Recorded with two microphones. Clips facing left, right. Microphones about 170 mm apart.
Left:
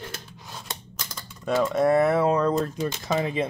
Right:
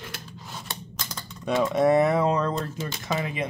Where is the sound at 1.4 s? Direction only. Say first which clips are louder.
Even; centre (ahead or behind).